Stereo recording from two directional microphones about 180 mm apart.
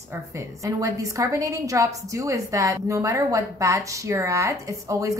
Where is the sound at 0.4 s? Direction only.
20° right (ahead or behind).